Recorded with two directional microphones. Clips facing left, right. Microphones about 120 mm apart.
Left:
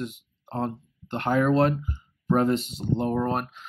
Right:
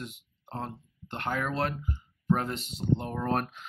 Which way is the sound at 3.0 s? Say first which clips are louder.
Left 9 dB; 30° left (ahead or behind).